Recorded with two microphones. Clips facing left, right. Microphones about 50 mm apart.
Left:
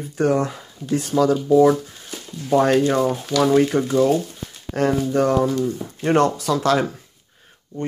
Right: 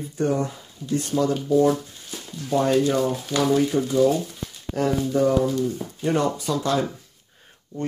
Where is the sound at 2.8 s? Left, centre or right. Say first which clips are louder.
Left 3 dB; left.